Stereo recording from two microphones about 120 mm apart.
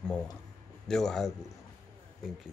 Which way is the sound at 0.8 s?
5° left (ahead or behind).